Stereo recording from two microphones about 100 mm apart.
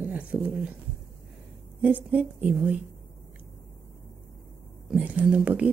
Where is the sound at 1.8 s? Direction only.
15° right (ahead or behind).